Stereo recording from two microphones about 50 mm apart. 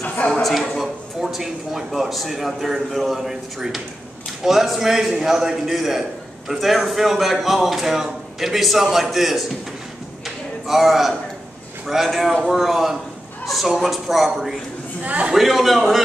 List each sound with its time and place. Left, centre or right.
0.0 s a sound: left
0.3 s a man's voice: centre
10.2 s a sound: centre
11.9 s a man's voice: centre
15.0 s a man's voice: right
15.3 s a man's voice: centre